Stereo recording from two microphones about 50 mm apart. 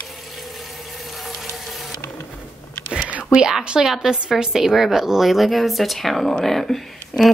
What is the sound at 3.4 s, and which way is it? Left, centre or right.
A woman's voice, centre.